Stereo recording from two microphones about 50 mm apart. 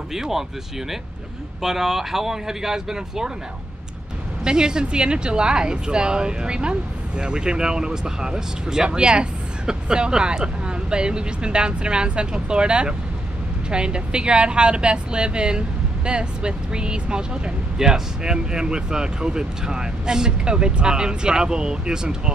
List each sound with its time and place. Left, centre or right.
0.1 s speech: centre
1.6 s speech: centre
4.5 s speech: centre